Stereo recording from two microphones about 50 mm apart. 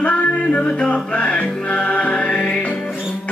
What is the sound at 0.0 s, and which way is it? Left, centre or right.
Music, left.